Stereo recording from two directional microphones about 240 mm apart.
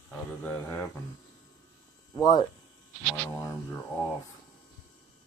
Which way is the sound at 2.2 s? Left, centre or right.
Centre.